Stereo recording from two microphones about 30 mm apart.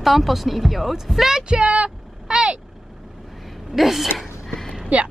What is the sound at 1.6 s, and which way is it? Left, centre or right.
Speech, right.